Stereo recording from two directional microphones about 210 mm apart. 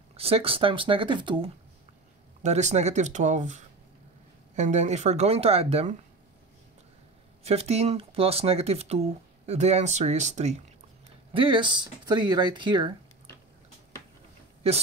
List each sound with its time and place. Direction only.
0.1 s speech: 25° right (ahead or behind)
7.4 s speech: 30° right (ahead or behind)
14.6 s speech: 30° right (ahead or behind)